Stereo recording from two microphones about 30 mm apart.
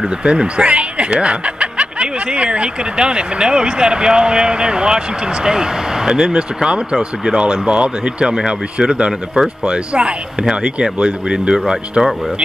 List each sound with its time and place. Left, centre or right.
0.2 s speech: right
12.0 s speech: centre